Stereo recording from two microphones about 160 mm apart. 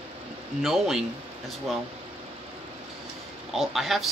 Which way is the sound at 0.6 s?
Centre (ahead or behind).